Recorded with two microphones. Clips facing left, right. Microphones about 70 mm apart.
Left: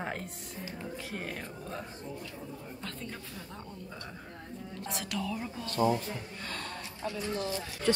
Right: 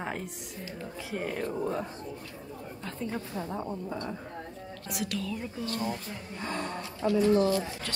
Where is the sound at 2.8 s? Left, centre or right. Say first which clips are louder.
Right 8 dB; centre.